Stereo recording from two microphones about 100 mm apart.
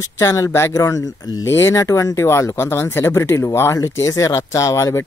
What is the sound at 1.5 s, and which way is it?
Speech, 25° left (ahead or behind).